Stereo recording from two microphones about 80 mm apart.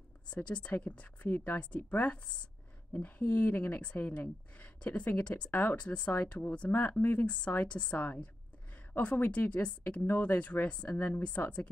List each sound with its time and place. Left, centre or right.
0.3 s speech: centre